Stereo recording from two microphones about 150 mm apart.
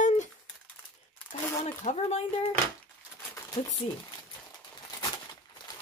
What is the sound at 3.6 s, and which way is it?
Speech, 55° left (ahead or behind).